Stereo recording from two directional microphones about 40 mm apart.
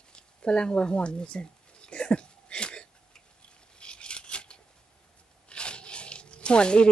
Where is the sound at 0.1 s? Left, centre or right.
Left.